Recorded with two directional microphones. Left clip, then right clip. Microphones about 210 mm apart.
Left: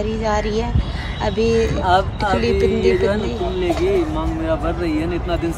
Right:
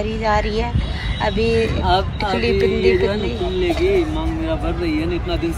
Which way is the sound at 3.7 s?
10° left (ahead or behind).